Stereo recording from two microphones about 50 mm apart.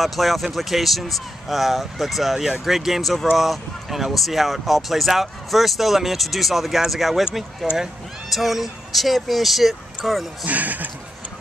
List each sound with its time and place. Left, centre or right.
0.0 s speech: centre
10.4 s speech: right